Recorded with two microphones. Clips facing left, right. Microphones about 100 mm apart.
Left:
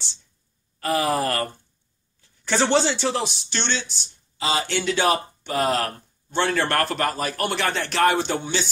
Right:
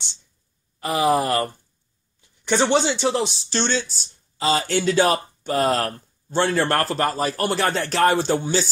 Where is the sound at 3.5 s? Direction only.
40° right (ahead or behind).